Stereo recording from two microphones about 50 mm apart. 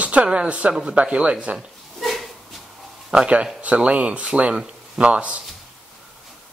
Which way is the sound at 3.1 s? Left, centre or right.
Right.